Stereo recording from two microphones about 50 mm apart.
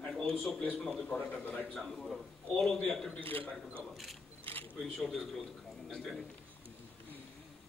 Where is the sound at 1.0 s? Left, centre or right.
Left.